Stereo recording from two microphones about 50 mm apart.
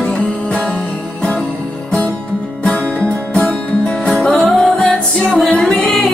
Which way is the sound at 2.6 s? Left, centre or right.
Centre.